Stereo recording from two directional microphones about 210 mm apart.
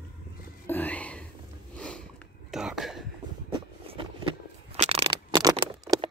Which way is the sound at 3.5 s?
25° right (ahead or behind).